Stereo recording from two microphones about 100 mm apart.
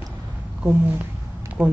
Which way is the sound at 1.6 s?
5° right (ahead or behind).